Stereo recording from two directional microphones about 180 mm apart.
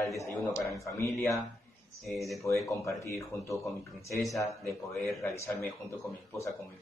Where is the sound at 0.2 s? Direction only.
15° left (ahead or behind).